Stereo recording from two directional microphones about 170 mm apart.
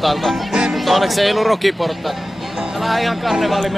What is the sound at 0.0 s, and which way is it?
Music, centre (ahead or behind).